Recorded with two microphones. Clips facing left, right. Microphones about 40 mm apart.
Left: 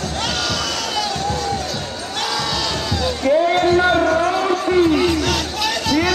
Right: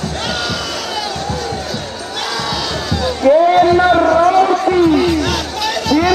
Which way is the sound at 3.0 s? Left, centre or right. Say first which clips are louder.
Right 6 dB; centre.